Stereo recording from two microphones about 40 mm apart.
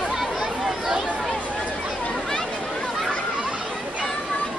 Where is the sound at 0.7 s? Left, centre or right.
Centre.